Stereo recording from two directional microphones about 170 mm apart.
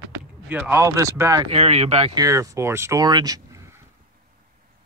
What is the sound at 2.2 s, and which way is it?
Speech, 20° right (ahead or behind).